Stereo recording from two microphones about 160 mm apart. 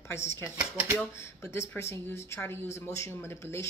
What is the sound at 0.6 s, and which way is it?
Speech, 10° right (ahead or behind).